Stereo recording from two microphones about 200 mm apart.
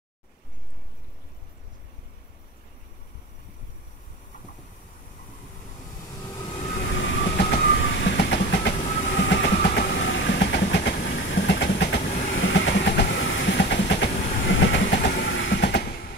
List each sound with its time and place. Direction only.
6.2 s vehicle: 25° left (ahead or behind)
6.8 s train: 65° left (ahead or behind)